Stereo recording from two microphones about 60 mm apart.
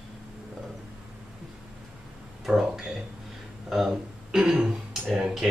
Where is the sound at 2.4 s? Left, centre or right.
Centre.